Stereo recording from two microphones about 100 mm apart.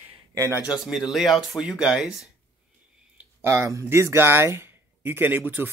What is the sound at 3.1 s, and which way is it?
Speech, 25° right (ahead or behind).